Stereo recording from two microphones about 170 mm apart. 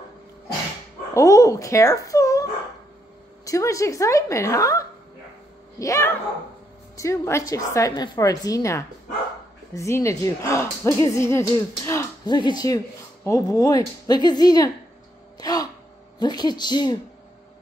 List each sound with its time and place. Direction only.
1.1 s speech: 20° left (ahead or behind)
3.4 s speech: 20° left (ahead or behind)
15.3 s gasp: 20° left (ahead or behind)
16.2 s speech: 25° left (ahead or behind)